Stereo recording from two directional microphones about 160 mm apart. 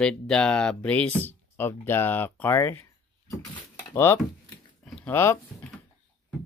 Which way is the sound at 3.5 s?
15° left (ahead or behind).